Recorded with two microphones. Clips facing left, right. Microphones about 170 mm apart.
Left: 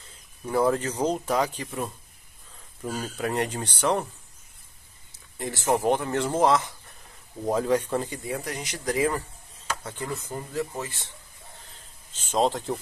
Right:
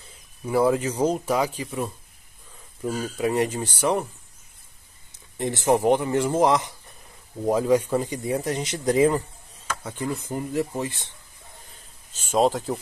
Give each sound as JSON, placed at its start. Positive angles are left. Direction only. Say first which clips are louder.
{"t": 0.5, "sound": "speech", "louder": "right 3 dB", "side_deg": -10}
{"t": 5.4, "sound": "a man's voice", "louder": "right 4 dB", "side_deg": -20}
{"t": 12.1, "sound": "speech", "louder": "right 3 dB", "side_deg": -10}